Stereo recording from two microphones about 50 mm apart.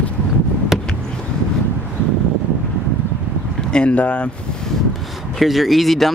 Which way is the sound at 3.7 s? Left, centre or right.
Left.